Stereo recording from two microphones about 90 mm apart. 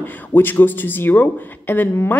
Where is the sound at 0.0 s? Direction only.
20° left (ahead or behind).